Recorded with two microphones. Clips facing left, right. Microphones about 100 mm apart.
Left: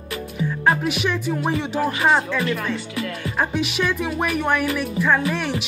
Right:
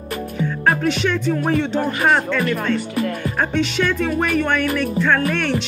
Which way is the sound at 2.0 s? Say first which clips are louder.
Right 2 dB; 40° right (ahead or behind).